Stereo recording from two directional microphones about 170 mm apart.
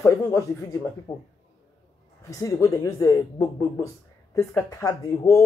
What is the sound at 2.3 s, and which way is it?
Speech, 20° left (ahead or behind).